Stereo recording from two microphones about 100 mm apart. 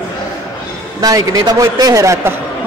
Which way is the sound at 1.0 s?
40° right (ahead or behind).